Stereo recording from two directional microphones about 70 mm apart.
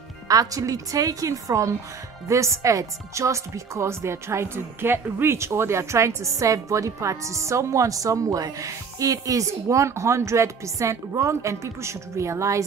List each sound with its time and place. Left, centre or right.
0.3 s speech: right